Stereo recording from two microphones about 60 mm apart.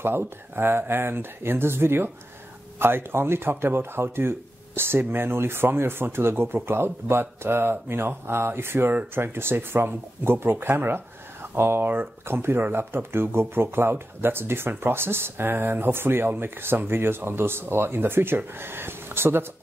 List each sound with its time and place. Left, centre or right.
0.0 s speech: right